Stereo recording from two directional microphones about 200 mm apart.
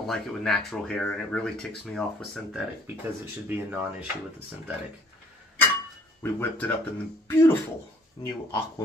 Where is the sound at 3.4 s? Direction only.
10° right (ahead or behind).